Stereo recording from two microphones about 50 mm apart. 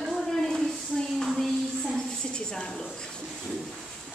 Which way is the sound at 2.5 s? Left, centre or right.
Centre.